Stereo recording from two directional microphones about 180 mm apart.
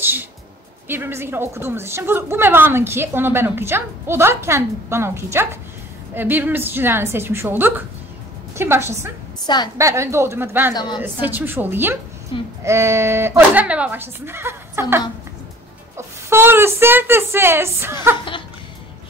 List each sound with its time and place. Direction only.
0.0 s a woman's voice: 10° right (ahead or behind)
10.7 s a woman's voice: 20° left (ahead or behind)
11.0 s a woman's voice: 10° right (ahead or behind)
12.3 s a woman's voice: 30° left (ahead or behind)
12.6 s a woman's voice: 15° right (ahead or behind)
16.3 s a woman's voice: 10° right (ahead or behind)